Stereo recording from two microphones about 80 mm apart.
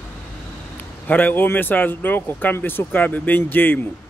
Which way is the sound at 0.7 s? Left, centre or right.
Left.